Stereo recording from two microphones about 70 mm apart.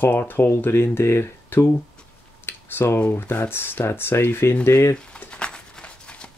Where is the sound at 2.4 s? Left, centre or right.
Left.